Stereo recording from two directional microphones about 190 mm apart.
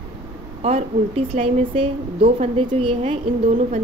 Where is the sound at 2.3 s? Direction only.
40° right (ahead or behind).